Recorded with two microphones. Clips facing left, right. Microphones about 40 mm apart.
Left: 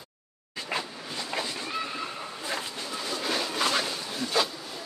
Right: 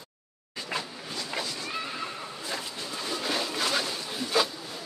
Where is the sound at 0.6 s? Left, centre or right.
Left.